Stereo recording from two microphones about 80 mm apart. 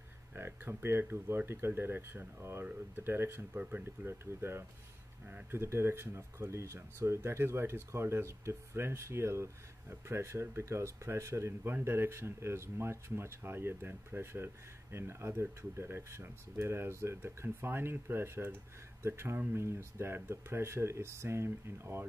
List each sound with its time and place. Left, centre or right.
0.3 s speech: right
5.2 s speech: right
5.6 s speech: right